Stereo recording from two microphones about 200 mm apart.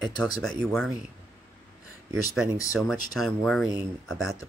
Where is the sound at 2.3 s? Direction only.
5° right (ahead or behind).